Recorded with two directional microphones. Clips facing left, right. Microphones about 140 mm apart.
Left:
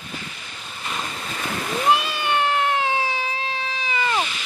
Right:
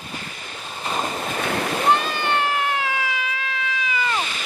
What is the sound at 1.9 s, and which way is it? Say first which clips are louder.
Cat: left 1 dB; 10° left (ahead or behind).